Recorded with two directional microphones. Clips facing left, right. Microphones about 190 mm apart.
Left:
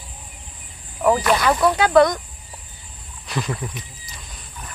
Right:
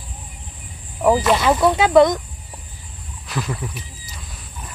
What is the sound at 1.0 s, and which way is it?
Speech, 5° right (ahead or behind).